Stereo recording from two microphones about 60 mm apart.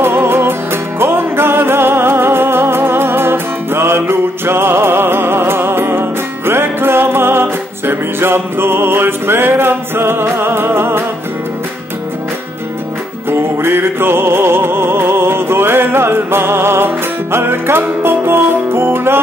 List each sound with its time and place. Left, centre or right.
0.0 s music: right
13.3 s music: right